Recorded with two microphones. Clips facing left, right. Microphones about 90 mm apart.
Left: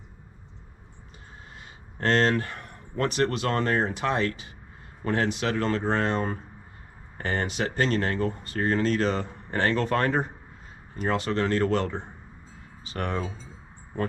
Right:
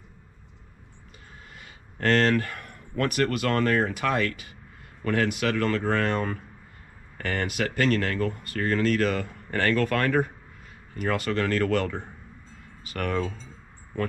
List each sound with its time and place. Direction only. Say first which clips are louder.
2.0 s a man's voice: right 1 dB; 25° left (ahead or behind)
13.2 s speech: right 3 dB; 5° left (ahead or behind)